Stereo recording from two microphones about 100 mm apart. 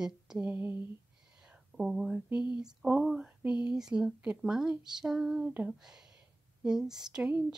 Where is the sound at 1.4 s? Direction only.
5° right (ahead or behind).